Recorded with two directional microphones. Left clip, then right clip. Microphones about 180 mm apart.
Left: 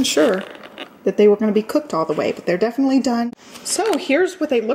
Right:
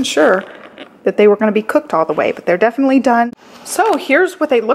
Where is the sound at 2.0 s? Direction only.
Centre (ahead or behind).